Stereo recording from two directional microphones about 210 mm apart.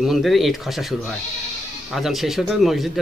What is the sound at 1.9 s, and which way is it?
Speech, centre (ahead or behind).